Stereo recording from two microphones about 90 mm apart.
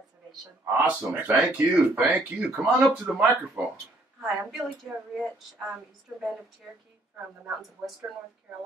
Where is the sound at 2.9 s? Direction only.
10° right (ahead or behind).